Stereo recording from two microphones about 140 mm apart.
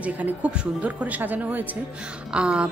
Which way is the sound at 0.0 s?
10° right (ahead or behind).